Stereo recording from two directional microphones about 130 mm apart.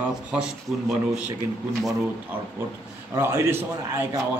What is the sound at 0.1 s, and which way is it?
A man's voice, 5° right (ahead or behind).